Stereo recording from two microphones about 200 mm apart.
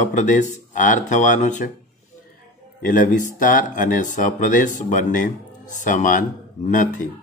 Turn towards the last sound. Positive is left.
turn(degrees=40)  # may be behind; listen again after turning